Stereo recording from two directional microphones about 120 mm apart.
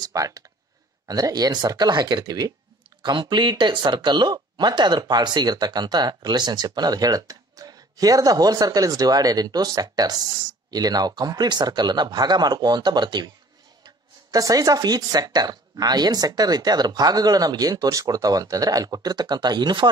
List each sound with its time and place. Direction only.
0.0 s speech: 30° right (ahead or behind)